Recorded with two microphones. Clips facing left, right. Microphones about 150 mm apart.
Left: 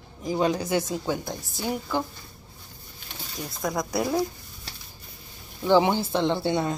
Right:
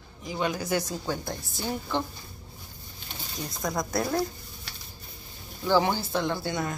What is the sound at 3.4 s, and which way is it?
Speech, 10° left (ahead or behind).